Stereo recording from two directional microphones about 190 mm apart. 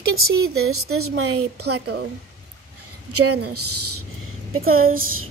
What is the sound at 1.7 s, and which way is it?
Speech, 60° right (ahead or behind).